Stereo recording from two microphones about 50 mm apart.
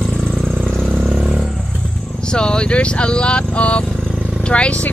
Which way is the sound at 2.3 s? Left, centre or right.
Centre.